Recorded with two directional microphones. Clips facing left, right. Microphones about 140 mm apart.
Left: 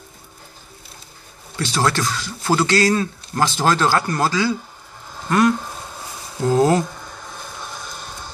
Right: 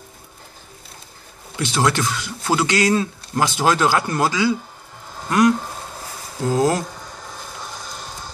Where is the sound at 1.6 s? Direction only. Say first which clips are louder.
Right 1 dB; 15° right (ahead or behind).